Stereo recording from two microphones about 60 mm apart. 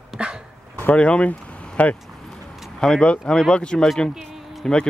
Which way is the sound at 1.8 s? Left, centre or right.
Left.